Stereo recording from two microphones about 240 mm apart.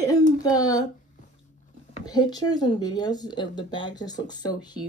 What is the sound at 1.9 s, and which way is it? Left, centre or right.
Speech, centre.